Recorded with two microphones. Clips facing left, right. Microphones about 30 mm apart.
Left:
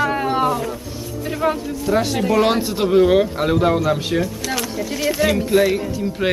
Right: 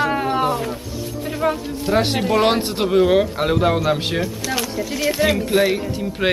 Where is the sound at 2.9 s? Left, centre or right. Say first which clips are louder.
Left 1 dB; centre.